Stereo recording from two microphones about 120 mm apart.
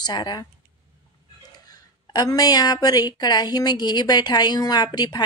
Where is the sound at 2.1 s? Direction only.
30° left (ahead or behind).